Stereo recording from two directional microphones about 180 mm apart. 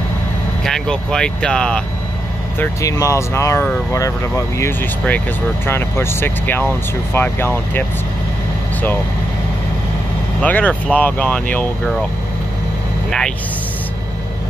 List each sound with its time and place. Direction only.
0.7 s speech: 5° left (ahead or behind)
2.6 s speech: 15° left (ahead or behind)
10.4 s speech: 10° left (ahead or behind)